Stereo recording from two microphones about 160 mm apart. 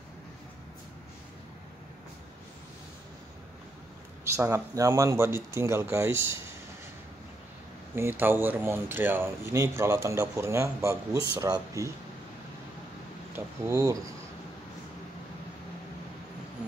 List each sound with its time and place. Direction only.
4.4 s speech: 15° right (ahead or behind)
7.9 s speech: 15° right (ahead or behind)
13.7 s speech: 20° right (ahead or behind)